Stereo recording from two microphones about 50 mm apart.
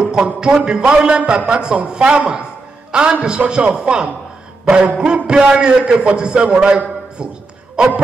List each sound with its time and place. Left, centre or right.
0.1 s a man's voice: centre